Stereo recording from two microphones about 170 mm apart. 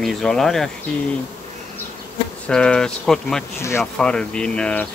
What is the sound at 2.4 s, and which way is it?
Insect, 5° left (ahead or behind).